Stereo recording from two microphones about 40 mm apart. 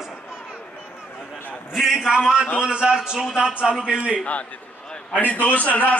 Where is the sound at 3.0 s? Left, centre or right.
Centre.